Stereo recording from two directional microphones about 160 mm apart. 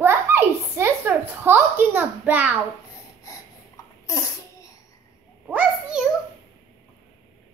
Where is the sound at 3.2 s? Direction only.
20° left (ahead or behind).